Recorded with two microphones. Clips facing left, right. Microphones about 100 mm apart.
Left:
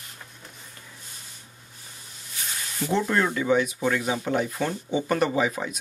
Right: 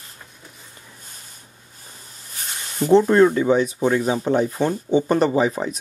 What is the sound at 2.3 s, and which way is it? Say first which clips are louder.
Speech: right 4 dB; 40° right (ahead or behind).